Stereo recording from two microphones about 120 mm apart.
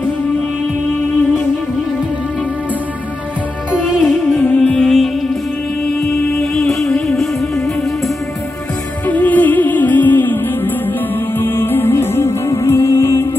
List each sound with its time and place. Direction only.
3.7 s music: centre (ahead or behind)
4.4 s music: 10° left (ahead or behind)
6.5 s music: centre (ahead or behind)
9.0 s music: 15° left (ahead or behind)